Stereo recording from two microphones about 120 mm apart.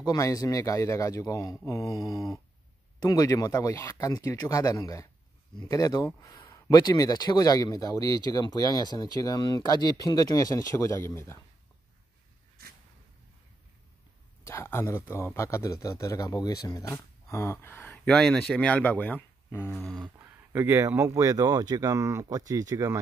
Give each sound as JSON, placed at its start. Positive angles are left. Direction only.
{"t": 0.0, "sound": "a man's voice", "side_deg": 30}
{"t": 14.4, "sound": "a man's voice", "side_deg": 20}
{"t": 17.8, "sound": "speech", "side_deg": 5}
{"t": 19.7, "sound": "a sound", "side_deg": 5}
{"t": 20.2, "sound": "speech", "side_deg": -20}